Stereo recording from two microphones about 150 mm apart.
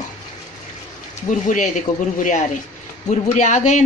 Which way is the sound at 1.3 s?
55° left (ahead or behind).